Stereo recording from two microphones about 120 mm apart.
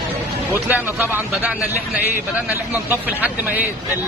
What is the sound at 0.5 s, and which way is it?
Speech, 15° right (ahead or behind).